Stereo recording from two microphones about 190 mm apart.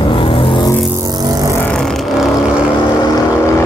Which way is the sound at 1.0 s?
20° right (ahead or behind).